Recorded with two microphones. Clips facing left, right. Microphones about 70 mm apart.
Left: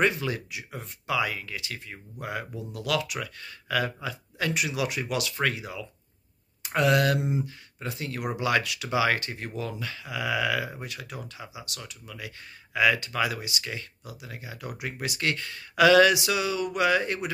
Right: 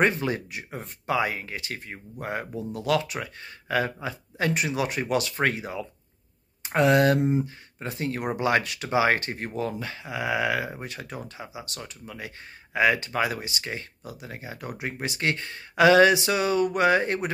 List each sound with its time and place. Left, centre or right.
0.0 s speech: right